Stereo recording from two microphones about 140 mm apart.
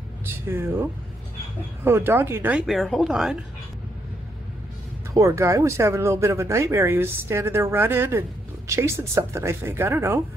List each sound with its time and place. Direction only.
0.5 s speech: 15° right (ahead or behind)
1.9 s speech: 15° right (ahead or behind)
2.6 s speech: centre (ahead or behind)
5.1 s speech: 20° right (ahead or behind)